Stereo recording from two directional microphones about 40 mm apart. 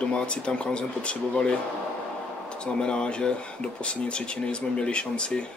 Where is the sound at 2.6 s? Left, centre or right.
Left.